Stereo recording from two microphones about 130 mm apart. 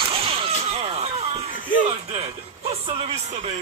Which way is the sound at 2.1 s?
50° right (ahead or behind).